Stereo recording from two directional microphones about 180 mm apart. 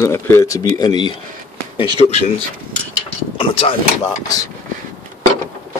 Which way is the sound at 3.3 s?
30° left (ahead or behind).